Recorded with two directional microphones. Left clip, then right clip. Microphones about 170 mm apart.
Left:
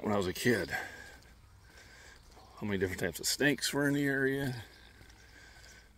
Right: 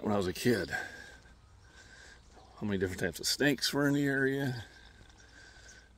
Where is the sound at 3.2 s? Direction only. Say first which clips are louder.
Right 1 dB; 45° right (ahead or behind).